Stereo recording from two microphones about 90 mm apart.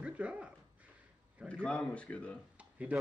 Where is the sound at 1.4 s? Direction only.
15° left (ahead or behind).